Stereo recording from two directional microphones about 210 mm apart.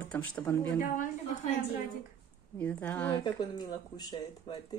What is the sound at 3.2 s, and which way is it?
Speech, 20° left (ahead or behind).